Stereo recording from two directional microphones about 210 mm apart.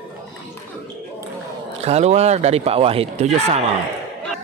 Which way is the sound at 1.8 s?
30° right (ahead or behind).